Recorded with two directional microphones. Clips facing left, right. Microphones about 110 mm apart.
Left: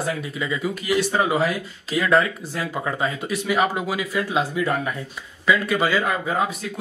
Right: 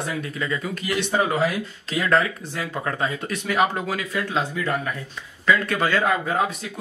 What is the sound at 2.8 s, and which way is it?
Speech, 5° left (ahead or behind).